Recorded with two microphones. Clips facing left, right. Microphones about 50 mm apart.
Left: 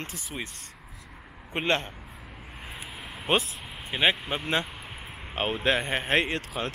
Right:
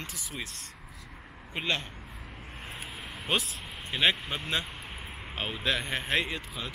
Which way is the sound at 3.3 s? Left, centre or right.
Left.